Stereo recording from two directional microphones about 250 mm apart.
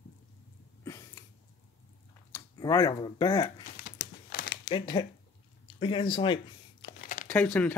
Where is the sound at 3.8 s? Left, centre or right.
Left.